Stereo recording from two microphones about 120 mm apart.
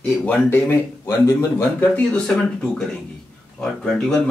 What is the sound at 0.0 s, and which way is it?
Speech, 10° left (ahead or behind).